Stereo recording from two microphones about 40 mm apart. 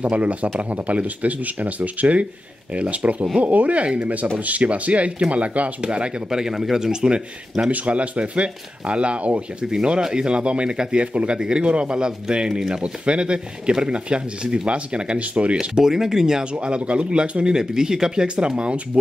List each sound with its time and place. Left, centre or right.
0.0 s speech: right
6.4 s speech: centre
7.7 s speech: right
9.6 s speech: right
15.8 s speech: centre
16.5 s speech: right